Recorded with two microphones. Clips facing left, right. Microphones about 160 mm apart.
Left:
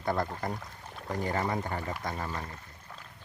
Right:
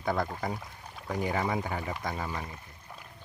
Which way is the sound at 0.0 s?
Centre (ahead or behind).